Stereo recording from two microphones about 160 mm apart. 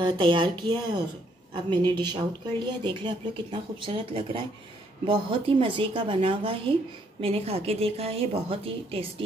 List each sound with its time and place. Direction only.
0.0 s speech: 30° right (ahead or behind)